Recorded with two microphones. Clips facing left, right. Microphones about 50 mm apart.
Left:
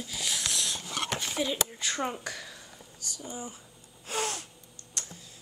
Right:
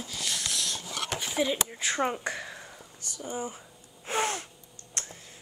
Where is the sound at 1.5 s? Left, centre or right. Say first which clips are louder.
Right 3 dB; right.